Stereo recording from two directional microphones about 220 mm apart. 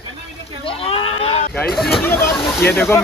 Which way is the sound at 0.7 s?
25° left (ahead or behind).